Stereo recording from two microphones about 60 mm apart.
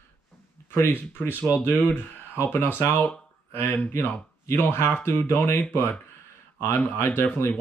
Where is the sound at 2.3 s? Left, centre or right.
Left.